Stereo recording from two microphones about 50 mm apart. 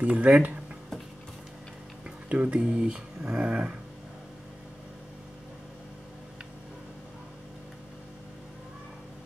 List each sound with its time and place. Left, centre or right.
0.0 s speech: right
2.0 s music: right
2.6 s speech: centre